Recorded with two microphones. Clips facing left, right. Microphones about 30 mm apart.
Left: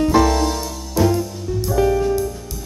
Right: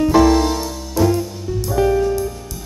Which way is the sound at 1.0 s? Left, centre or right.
Centre.